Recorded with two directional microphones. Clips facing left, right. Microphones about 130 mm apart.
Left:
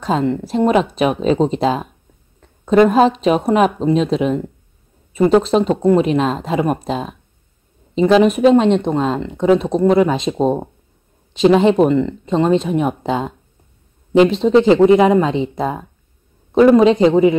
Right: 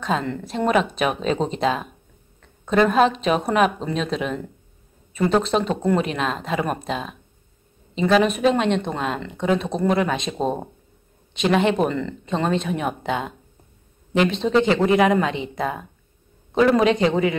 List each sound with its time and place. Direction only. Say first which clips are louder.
0.0 s speech: left 6 dB; 30° left (ahead or behind)
14.4 s speech: left 8 dB; 25° left (ahead or behind)